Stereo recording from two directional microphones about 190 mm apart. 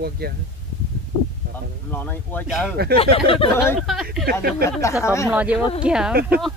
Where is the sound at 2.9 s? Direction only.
30° left (ahead or behind).